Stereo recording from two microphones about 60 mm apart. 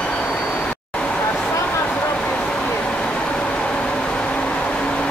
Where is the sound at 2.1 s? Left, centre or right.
Centre.